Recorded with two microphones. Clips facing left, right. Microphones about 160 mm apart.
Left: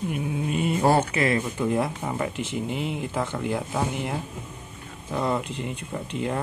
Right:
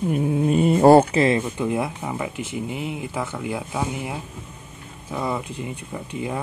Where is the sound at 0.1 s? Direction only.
40° right (ahead or behind).